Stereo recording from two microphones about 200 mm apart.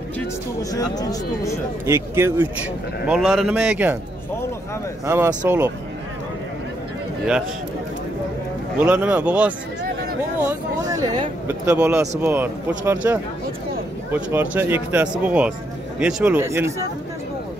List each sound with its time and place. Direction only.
0.6 s speech: 20° left (ahead or behind)
1.9 s speech: 15° right (ahead or behind)
3.1 s a man's voice: centre (ahead or behind)
5.0 s speech: 10° right (ahead or behind)
8.7 s speech: 5° right (ahead or behind)